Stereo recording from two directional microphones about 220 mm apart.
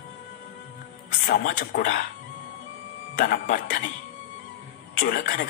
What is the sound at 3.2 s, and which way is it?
Speech, 40° left (ahead or behind).